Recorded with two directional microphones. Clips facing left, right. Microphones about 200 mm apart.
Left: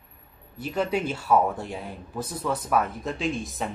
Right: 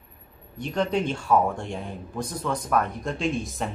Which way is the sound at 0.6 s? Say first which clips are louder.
Right 1 dB; 5° left (ahead or behind).